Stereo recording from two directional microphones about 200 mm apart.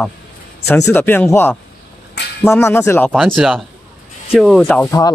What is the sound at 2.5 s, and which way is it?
Speech, 10° left (ahead or behind).